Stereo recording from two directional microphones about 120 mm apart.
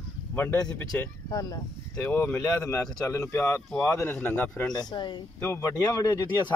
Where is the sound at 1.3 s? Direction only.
30° left (ahead or behind); by 4.6 s 15° left (ahead or behind).